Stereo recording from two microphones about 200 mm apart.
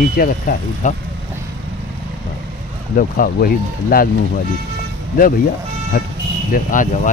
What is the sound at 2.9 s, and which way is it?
Speech, 45° left (ahead or behind).